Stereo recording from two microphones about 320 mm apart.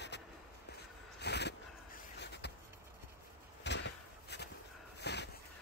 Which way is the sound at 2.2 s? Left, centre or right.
Left.